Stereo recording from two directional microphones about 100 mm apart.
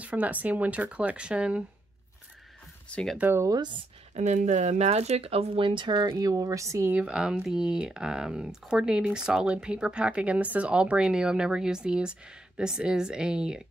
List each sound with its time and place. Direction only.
0.0 s speech: 15° right (ahead or behind)
2.9 s speech: 5° left (ahead or behind)
3.2 s speech: 20° right (ahead or behind)
3.4 s speech: 45° right (ahead or behind)
4.2 s speech: 90° right; by 6.9 s 30° right (ahead or behind)
6.9 s speech: 10° right (ahead or behind)